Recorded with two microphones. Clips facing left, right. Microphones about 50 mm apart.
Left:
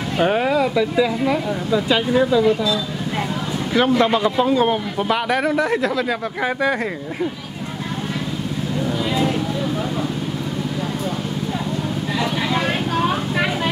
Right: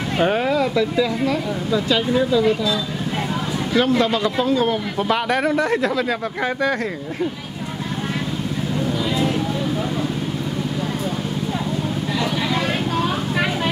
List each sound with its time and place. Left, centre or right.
0.2 s speech: centre
3.7 s a man's voice: left
4.9 s speech: centre
9.1 s a sound: centre
12.2 s vehicle: centre
13.3 s vehicle: centre